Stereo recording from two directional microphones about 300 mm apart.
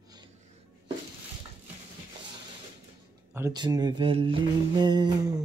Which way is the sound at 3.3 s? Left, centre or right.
Centre.